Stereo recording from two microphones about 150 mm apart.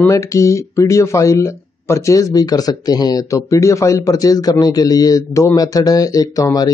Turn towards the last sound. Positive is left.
turn(degrees=25)  # may be behind; listen again after turning